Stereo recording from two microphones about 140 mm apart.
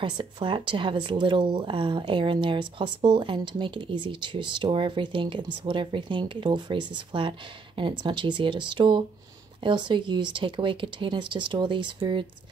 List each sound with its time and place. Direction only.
0.0 s speech: 35° right (ahead or behind)